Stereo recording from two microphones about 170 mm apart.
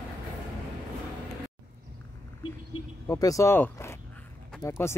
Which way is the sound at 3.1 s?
20° left (ahead or behind).